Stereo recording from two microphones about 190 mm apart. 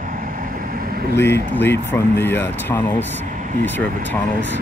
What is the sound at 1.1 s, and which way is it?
Speech, 10° left (ahead or behind).